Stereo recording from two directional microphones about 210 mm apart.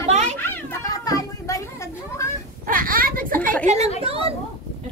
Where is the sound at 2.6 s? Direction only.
40° right (ahead or behind).